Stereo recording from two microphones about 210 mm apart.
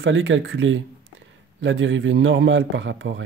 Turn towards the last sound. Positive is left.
turn(degrees=-65)  # may be behind; listen again after turning